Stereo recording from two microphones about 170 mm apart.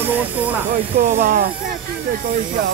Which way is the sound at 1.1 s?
55° right (ahead or behind).